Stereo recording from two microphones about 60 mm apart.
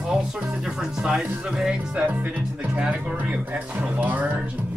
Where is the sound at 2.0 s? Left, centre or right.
Right.